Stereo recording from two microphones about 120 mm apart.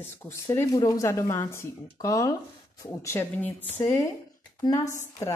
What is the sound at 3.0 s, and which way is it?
Speech, 15° left (ahead or behind).